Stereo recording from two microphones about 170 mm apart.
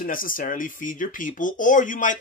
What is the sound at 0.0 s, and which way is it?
Speech, 55° left (ahead or behind).